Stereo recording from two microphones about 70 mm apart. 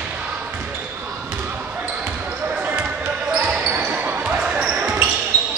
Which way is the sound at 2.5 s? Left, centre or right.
Centre.